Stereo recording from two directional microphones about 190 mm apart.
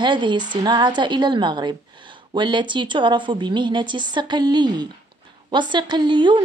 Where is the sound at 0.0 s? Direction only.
25° right (ahead or behind).